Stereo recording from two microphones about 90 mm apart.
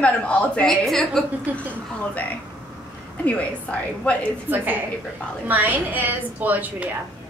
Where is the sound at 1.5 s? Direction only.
20° right (ahead or behind).